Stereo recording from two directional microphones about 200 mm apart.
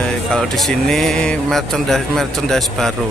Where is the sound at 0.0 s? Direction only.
5° left (ahead or behind).